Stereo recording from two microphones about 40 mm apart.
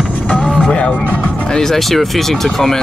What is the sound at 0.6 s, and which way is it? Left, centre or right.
Music, left.